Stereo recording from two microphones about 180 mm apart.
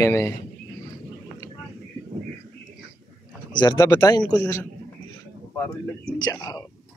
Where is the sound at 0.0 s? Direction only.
15° left (ahead or behind).